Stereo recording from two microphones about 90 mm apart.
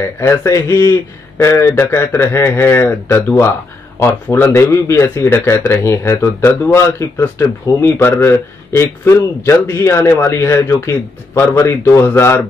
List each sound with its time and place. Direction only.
0.3 s a man's voice: 35° left (ahead or behind)